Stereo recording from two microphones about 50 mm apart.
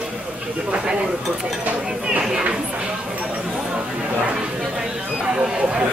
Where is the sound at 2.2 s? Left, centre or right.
Centre.